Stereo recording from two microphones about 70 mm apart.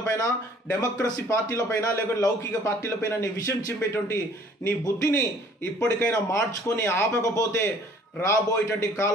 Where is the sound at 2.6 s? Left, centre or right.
Left.